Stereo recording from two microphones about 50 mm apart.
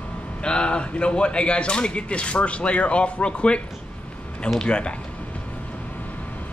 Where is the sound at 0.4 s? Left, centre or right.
Left.